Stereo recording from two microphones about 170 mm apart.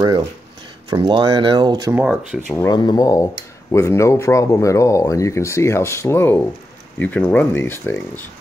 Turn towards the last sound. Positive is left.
turn(degrees=15)  # may be behind; listen again after turning